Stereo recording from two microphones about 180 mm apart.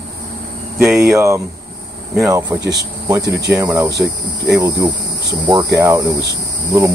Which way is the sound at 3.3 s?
65° right (ahead or behind).